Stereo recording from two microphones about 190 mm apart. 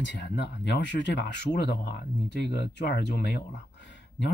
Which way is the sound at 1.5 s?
50° left (ahead or behind).